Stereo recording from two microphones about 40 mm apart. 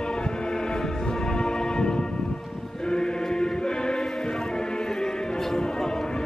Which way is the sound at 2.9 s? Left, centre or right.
Centre.